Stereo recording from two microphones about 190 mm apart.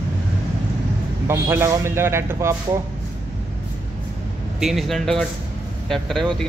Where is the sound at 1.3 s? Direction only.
15° right (ahead or behind).